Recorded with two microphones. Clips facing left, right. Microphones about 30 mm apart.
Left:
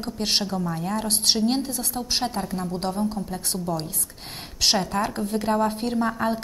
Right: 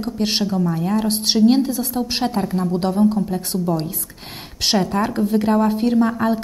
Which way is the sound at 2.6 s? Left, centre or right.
Centre.